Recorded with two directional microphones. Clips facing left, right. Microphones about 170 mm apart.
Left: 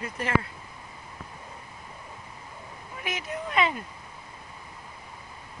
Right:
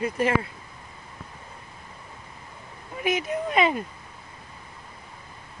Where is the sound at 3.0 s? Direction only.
20° right (ahead or behind).